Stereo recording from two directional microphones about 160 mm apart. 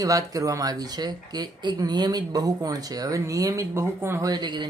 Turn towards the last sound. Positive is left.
turn(degrees=-25)  # may be behind; listen again after turning